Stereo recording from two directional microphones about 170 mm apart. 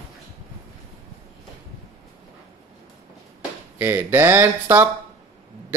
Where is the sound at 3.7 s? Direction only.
10° right (ahead or behind).